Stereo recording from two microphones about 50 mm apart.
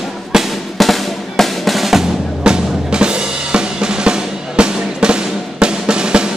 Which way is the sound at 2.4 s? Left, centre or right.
Centre.